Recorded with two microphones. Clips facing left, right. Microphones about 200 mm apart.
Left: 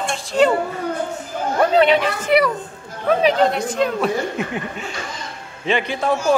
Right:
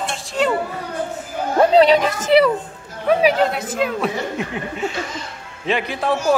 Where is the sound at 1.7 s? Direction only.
40° right (ahead or behind).